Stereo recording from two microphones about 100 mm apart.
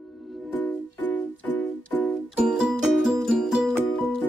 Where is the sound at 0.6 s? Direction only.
20° left (ahead or behind).